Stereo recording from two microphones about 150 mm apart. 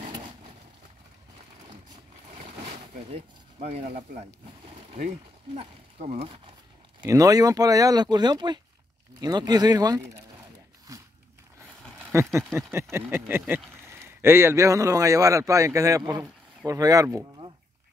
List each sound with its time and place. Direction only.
2.3 s a sound: 40° right (ahead or behind)
5.6 s speech: 45° right (ahead or behind)
6.2 s speech: 35° right (ahead or behind)
7.1 s speech: 25° right (ahead or behind)
10.9 s biting: 20° right (ahead or behind)
12.1 s speech: 20° right (ahead or behind)